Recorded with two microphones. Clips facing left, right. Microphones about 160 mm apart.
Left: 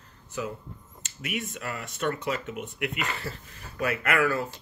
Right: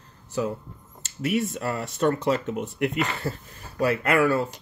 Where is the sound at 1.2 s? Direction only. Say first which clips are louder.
Right 9 dB; 35° right (ahead or behind).